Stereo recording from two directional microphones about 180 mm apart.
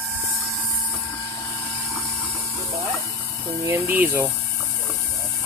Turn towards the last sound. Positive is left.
turn(degrees=-10)  # may be behind; listen again after turning